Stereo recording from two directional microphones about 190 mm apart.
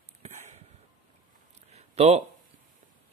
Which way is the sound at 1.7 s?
35° right (ahead or behind).